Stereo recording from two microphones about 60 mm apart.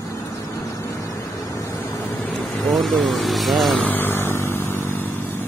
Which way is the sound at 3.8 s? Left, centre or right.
Left.